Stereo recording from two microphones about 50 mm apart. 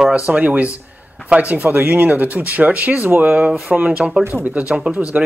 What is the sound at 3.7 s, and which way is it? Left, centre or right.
Speech, right.